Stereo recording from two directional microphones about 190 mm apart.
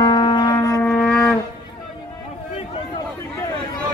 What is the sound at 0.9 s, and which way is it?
Shofar, 5° left (ahead or behind).